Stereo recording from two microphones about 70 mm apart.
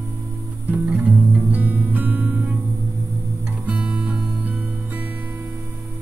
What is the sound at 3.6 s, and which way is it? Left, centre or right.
Music, right.